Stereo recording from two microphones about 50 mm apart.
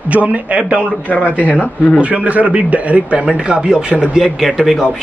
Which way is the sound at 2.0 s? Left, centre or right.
Right.